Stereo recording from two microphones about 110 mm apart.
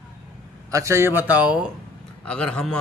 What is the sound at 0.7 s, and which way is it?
Speech, 25° right (ahead or behind).